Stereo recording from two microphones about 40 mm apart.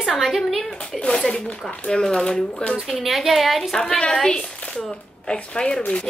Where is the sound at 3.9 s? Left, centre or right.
Left.